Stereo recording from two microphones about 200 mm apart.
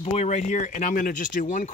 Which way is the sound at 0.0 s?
35° left (ahead or behind).